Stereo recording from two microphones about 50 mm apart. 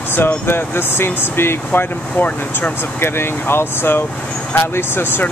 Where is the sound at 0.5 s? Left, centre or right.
Left.